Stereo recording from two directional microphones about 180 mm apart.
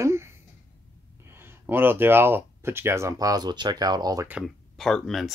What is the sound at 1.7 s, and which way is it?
Speech, 10° right (ahead or behind).